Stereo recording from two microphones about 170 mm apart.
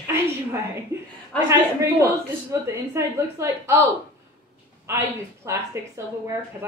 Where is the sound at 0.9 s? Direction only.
15° right (ahead or behind).